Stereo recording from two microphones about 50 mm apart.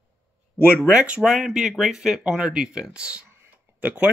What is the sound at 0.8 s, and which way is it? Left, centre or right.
Speech, right.